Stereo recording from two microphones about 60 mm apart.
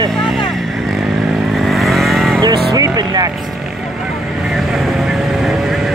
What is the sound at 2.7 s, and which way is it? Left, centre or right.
Speech, right.